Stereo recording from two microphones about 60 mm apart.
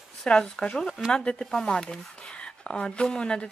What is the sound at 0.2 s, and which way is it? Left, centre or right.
Speech, centre.